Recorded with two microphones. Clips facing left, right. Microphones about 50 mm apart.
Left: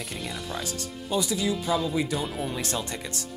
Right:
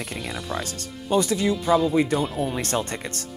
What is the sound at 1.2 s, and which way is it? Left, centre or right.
Speech, right.